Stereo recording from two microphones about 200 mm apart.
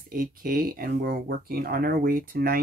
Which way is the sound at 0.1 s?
45° right (ahead or behind).